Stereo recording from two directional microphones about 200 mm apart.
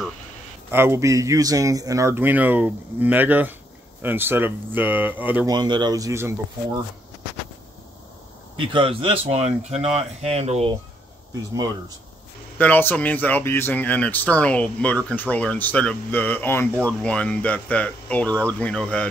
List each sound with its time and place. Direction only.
0.7 s speech: 10° right (ahead or behind)
5.5 s speech: 20° right (ahead or behind)
8.5 s speech: 25° right (ahead or behind)
12.5 s speech: 10° left (ahead or behind)